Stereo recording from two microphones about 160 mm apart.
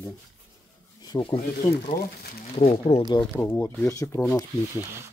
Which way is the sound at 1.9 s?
70° left (ahead or behind).